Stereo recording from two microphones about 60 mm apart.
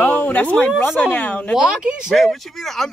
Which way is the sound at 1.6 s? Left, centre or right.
Centre.